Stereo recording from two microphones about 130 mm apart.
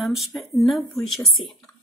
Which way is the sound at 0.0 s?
Centre (ahead or behind).